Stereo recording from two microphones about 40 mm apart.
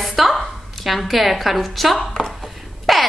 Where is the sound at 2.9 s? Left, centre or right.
Centre.